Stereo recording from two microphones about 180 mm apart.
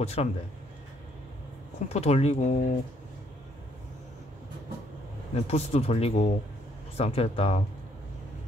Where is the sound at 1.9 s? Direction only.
35° left (ahead or behind).